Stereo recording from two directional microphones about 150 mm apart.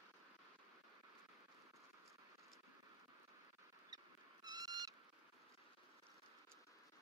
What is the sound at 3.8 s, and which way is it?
Owl, 25° right (ahead or behind).